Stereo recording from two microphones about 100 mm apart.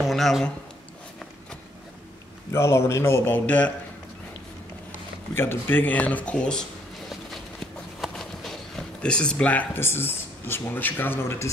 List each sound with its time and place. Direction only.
0.0 s speech: centre (ahead or behind)
2.5 s a man's voice: 25° left (ahead or behind)
5.3 s speech: 25° left (ahead or behind)
7.1 s a sound: centre (ahead or behind)
8.0 s speech: 5° left (ahead or behind); by 11.4 s 20° left (ahead or behind)